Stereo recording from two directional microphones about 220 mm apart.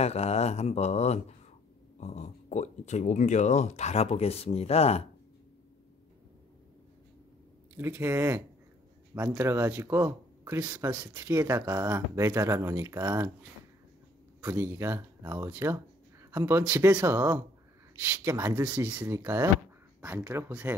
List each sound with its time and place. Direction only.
0.0 s speech: 30° left (ahead or behind)
7.7 s speech: 10° right (ahead or behind)
14.4 s speech: 10° right (ahead or behind)